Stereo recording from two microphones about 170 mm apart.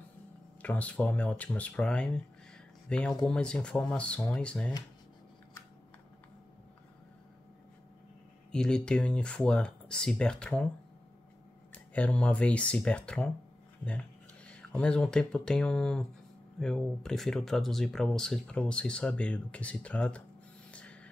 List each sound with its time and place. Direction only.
0.6 s speech: 10° left (ahead or behind)
8.5 s speech: 5° left (ahead or behind)
11.7 s speech: 10° left (ahead or behind)
20.7 s a sound: 5° left (ahead or behind)